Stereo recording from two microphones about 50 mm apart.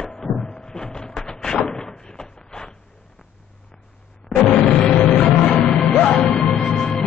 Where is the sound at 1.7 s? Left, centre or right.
Centre.